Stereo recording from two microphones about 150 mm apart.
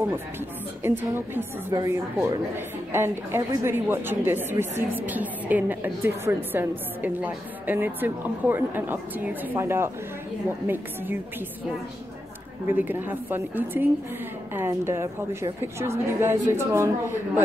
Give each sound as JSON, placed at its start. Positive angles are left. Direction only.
{"t": 0.8, "sound": "a woman's voice", "side_deg": -15}
{"t": 12.6, "sound": "a woman's voice", "side_deg": -15}